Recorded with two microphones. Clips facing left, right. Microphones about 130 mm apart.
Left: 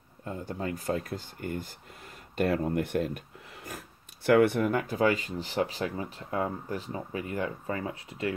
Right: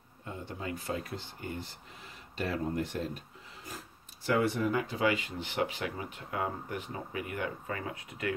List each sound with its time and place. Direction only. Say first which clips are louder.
0.2 s speech: left 5 dB; 45° left (ahead or behind)